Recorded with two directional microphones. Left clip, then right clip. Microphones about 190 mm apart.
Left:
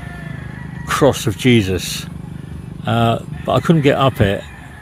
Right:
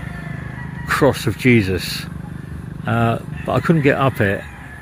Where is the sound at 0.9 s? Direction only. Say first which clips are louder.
Left 2 dB; 10° left (ahead or behind).